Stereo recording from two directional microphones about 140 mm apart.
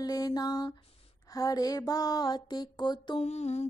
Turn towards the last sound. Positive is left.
turn(degrees=50)  # may be behind; listen again after turning